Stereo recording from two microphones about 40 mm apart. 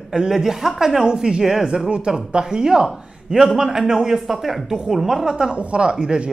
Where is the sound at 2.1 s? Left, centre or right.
Centre.